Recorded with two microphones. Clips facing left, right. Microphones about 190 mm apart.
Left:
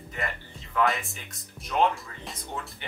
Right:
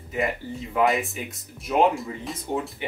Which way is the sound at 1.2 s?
10° right (ahead or behind).